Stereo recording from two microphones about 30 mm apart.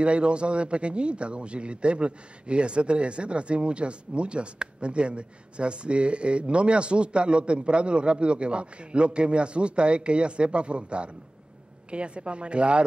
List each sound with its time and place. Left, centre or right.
0.0 s a man's voice: right